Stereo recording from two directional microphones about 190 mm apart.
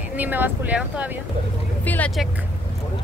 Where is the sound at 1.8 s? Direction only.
10° left (ahead or behind).